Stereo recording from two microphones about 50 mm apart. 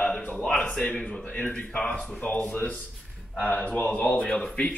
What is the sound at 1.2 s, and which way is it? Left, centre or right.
Speech, left.